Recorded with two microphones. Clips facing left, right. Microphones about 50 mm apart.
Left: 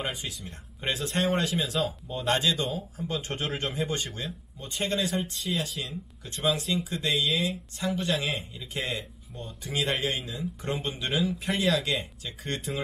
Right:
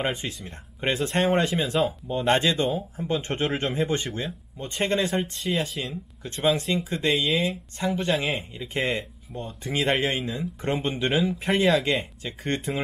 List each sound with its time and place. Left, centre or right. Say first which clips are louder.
0.0 s speech: right 5 dB; right